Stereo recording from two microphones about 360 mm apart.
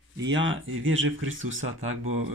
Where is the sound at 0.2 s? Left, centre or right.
Right.